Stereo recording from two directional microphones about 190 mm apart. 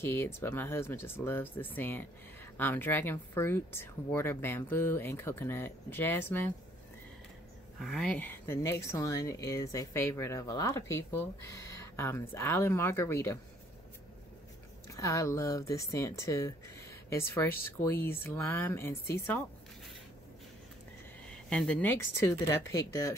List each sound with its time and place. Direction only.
0.0 s speech: 10° left (ahead or behind)
7.8 s speech: centre (ahead or behind)
14.9 s speech: 15° left (ahead or behind)
21.3 s speech: 5° left (ahead or behind)